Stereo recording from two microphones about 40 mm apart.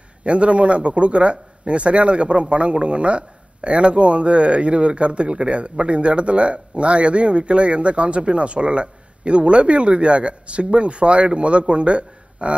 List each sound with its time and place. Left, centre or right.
0.2 s a man's voice: right